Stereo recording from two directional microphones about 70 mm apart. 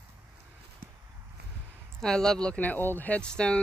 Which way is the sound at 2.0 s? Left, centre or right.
Centre.